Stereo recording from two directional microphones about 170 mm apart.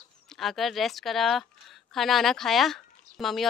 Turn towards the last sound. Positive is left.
turn(degrees=0)  # may be behind; listen again after turning